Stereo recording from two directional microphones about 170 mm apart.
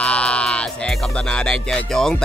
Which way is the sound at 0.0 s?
5° left (ahead or behind).